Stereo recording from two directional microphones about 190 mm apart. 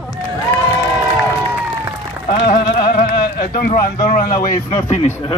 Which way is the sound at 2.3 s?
60° left (ahead or behind).